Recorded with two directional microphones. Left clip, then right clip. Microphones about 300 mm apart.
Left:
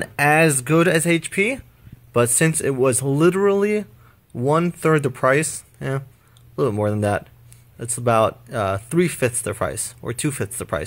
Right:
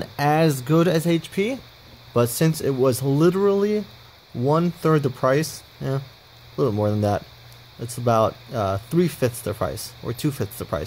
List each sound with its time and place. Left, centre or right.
0.0 s speech: centre